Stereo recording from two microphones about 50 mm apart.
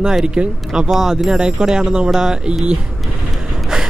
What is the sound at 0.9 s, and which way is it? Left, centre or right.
Speech, centre.